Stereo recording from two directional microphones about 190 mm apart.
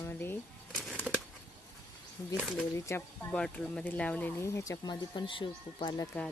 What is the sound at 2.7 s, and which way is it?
Speech, 15° left (ahead or behind).